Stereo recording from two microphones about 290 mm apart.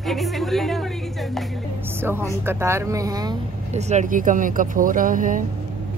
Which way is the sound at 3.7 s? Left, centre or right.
Right.